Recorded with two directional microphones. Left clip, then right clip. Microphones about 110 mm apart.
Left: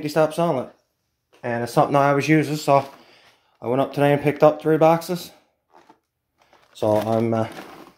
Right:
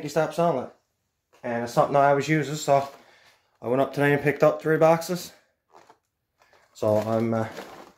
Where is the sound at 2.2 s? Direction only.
85° left; by 2.8 s 65° left (ahead or behind).